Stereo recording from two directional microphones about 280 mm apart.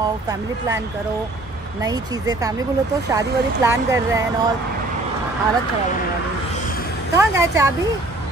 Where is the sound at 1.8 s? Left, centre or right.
Centre.